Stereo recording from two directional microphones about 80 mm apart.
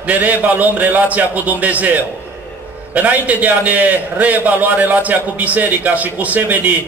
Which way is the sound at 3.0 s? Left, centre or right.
Centre.